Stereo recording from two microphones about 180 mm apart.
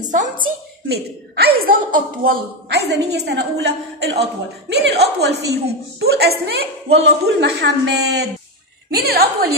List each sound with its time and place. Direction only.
0.1 s a woman's voice: 45° right (ahead or behind)
0.8 s a woman's voice: 65° right (ahead or behind)
3.1 s a woman's voice: 65° right (ahead or behind)